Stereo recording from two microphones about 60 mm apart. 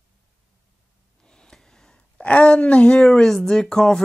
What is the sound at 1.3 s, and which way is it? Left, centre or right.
Snort, centre.